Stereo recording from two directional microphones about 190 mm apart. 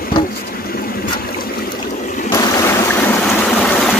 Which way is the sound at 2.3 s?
15° left (ahead or behind).